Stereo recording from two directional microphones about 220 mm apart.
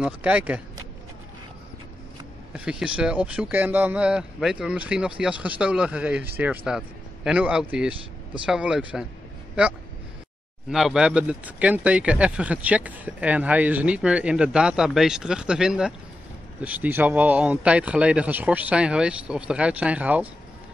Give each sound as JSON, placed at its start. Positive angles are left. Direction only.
{"t": 0.0, "sound": "speech", "side_deg": -5}
{"t": 2.5, "sound": "speech", "side_deg": -5}
{"t": 10.7, "sound": "speech", "side_deg": 0}